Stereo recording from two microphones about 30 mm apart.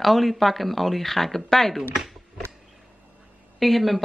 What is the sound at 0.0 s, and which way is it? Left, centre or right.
Speech, centre.